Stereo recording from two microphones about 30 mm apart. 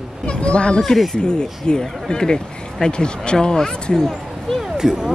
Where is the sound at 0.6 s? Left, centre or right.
Left.